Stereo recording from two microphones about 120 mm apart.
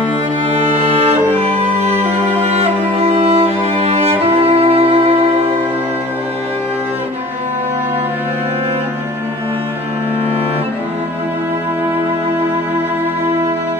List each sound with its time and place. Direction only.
1.6 s music: 55° right (ahead or behind)